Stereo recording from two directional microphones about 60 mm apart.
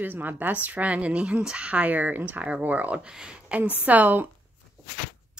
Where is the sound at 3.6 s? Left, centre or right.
Right.